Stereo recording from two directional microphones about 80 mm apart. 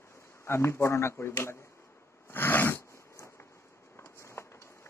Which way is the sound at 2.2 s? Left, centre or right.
Left.